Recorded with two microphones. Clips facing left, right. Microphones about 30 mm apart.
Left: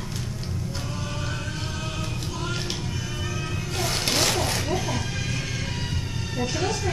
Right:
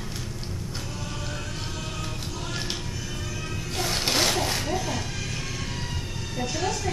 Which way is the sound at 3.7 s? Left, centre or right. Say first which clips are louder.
Even; centre.